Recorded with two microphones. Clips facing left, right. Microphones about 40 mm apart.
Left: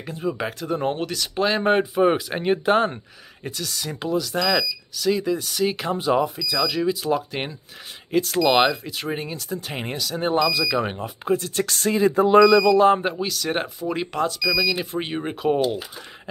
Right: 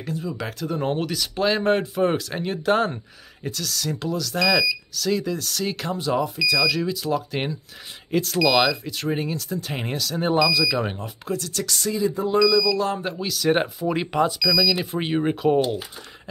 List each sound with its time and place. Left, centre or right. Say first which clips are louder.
0.1 s speech: left 3 dB; left
0.5 s speech: left 1 dB; centre
1.6 s speech: left 2 dB; centre
2.7 s speech: right 3 dB; centre
11.2 s speech: left 5 dB; left
12.3 s speech: left 5 dB; left
12.7 s speech: left 8 dB; left
13.2 s speech: right 3 dB; centre